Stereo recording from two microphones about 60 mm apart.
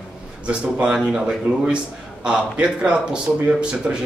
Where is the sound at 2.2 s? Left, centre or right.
Centre.